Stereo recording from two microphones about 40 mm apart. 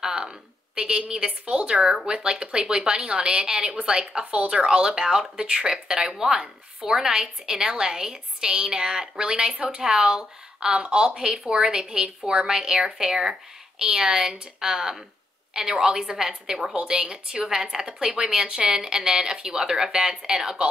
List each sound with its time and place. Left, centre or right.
0.0 s a sound: centre
0.7 s a woman's voice: right
9.5 s speech: right
9.8 s a woman's voice: centre